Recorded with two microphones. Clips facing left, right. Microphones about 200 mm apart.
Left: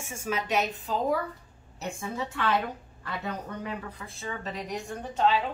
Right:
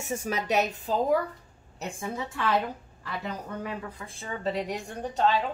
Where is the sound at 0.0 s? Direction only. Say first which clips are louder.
Right 2 dB; 40° right (ahead or behind).